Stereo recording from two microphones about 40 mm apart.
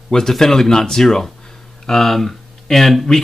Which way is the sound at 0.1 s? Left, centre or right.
Centre.